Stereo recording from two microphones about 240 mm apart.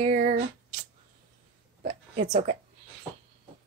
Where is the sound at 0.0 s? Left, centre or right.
Right.